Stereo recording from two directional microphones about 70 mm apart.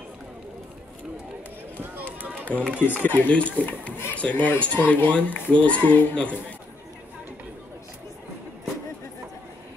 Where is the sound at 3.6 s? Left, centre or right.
Left.